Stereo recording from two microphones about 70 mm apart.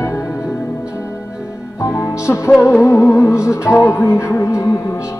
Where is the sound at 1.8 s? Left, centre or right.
Left.